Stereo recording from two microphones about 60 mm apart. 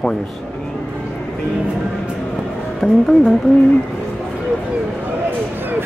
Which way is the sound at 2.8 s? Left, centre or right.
Centre.